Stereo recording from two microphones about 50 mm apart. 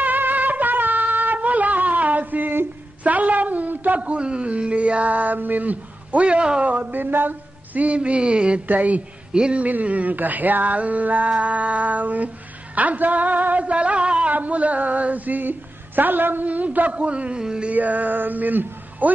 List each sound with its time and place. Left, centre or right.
0.0 s a sound: right
6.7 s speech: right
8.6 s speech: right
9.3 s speech: centre
9.7 s speech: right
17.6 s speech: right